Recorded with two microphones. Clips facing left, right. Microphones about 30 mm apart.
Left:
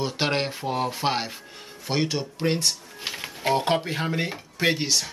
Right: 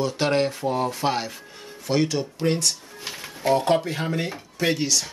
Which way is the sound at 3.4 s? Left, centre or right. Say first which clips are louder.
Right 3 dB; left.